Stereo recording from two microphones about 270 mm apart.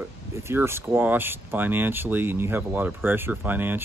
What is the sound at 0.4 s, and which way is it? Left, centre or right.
Speech, centre.